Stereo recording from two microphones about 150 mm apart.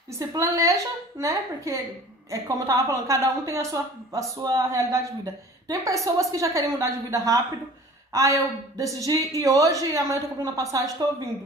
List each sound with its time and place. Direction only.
0.2 s a woman's voice: 25° right (ahead or behind)